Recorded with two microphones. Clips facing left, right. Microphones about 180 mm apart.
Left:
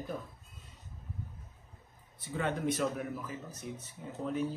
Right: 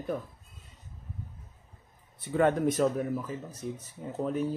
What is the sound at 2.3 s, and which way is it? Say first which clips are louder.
A man's voice: right 8 dB; 45° right (ahead or behind).